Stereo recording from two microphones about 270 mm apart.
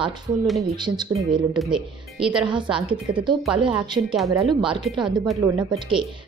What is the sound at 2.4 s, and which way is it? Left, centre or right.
Speech, centre.